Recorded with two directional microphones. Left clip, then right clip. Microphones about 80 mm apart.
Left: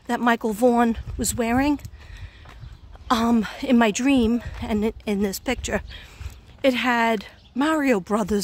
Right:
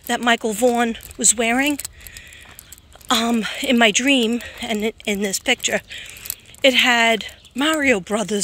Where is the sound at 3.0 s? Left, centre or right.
Left.